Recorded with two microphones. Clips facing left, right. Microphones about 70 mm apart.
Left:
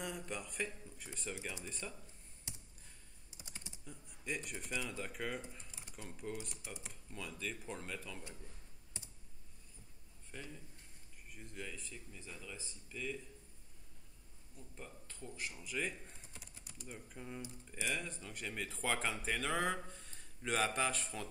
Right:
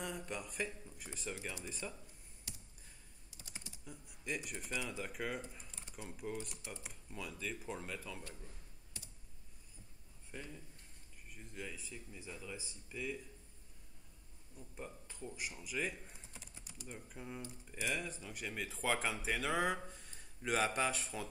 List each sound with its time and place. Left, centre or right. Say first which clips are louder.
0.0 s speech: even; centre
2.5 s clicking: even; left
3.3 s typing: left 2 dB; left
3.8 s speech: even; centre
5.7 s typing: even; centre
6.0 s speech: right 1 dB; centre
9.0 s computer keyboard: left 1 dB; left
10.3 s speech: right 1 dB; centre
14.8 s speech: right 4 dB; centre